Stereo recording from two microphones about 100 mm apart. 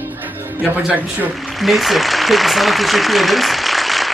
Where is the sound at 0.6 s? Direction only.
15° right (ahead or behind).